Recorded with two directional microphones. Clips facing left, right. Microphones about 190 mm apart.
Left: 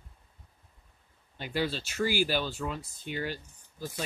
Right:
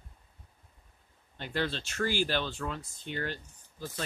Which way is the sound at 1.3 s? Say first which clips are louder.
Left 2 dB; 10° left (ahead or behind).